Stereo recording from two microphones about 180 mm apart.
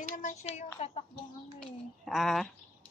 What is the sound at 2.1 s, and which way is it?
Speech, centre (ahead or behind).